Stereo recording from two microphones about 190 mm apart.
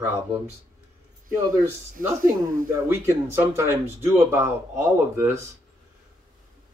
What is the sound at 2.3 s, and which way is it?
Speech, 45° right (ahead or behind).